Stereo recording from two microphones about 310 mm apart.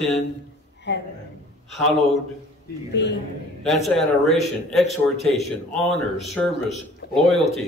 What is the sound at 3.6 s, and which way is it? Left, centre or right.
A man's voice, centre.